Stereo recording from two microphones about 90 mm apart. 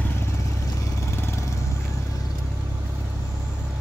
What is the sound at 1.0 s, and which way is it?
Vehicle, 30° left (ahead or behind).